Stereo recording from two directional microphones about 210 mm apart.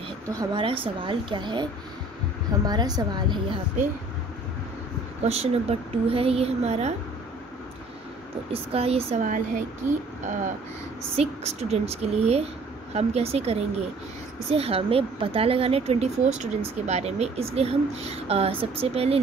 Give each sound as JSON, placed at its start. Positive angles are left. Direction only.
{"t": 0.3, "sound": "speech", "side_deg": -20}
{"t": 5.2, "sound": "speech", "side_deg": -30}
{"t": 8.5, "sound": "speech", "side_deg": -30}